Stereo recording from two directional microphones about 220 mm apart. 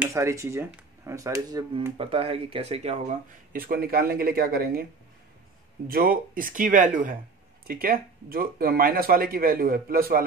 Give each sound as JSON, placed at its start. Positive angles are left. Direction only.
{"t": 0.0, "sound": "speech", "side_deg": -15}
{"t": 3.5, "sound": "speech", "side_deg": -40}
{"t": 5.9, "sound": "speech", "side_deg": -40}